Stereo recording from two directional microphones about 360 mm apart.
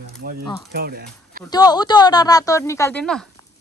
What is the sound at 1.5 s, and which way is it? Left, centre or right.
A woman's voice, centre.